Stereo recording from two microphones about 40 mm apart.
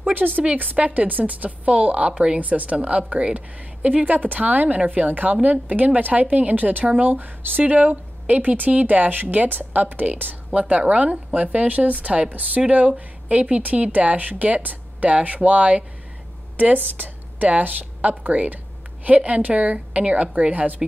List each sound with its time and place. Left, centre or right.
0.2 s a woman's voice: centre
0.7 s a woman's voice: right
4.0 s a woman's voice: right
10.5 s a woman's voice: right